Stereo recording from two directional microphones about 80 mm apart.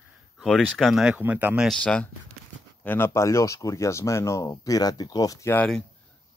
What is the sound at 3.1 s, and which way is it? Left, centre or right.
Speech, left.